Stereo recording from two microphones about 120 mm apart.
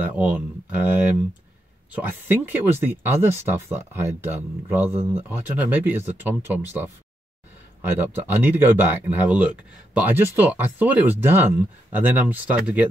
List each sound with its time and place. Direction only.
0.0 s speech: 15° right (ahead or behind)
7.9 s speech: 20° right (ahead or behind)